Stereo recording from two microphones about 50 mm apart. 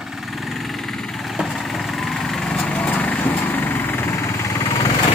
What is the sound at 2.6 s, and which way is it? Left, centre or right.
Vehicle, left.